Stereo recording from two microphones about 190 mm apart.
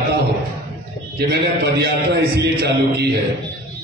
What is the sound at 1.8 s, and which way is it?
A man's voice, 60° right (ahead or behind).